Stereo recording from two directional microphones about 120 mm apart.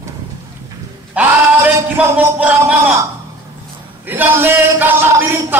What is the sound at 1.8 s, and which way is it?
Speech, 20° right (ahead or behind).